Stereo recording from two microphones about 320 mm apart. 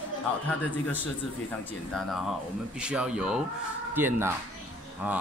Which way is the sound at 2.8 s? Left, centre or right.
Centre.